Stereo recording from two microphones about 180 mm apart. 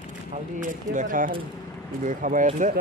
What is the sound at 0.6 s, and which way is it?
A man's voice, 45° right (ahead or behind).